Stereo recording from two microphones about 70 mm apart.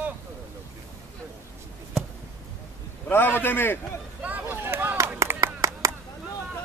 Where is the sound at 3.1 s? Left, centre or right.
Left.